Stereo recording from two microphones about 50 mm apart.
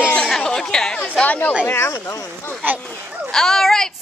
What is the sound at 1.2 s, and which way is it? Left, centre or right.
Speech, left.